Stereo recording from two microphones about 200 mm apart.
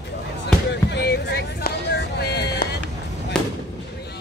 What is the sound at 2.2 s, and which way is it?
Music, 55° left (ahead or behind).